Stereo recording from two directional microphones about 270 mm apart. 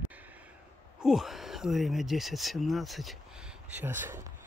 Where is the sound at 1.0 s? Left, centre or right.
Centre.